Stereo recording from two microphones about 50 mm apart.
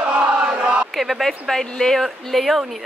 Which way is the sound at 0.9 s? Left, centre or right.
Centre.